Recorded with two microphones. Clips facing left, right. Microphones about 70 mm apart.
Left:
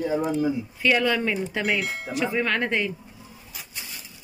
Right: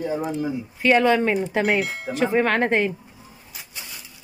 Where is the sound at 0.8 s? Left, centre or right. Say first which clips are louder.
Right 5 dB; right.